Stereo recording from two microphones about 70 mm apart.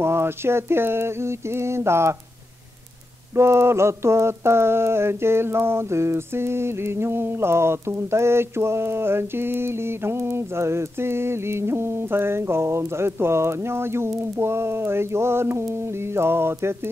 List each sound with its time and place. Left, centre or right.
0.0 s mantra: right
3.3 s mantra: right